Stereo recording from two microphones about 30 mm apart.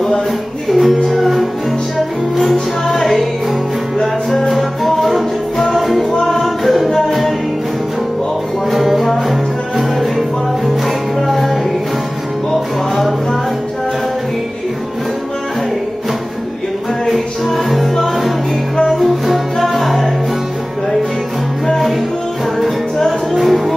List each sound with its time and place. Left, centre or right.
0.7 s music: centre
2.9 s music: centre
4.5 s music: centre
6.2 s music: centre
8.6 s music: centre
17.9 s music: centre
18.9 s music: centre
21.6 s music: centre